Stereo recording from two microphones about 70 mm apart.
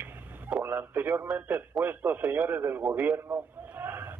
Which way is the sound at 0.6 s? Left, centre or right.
Right.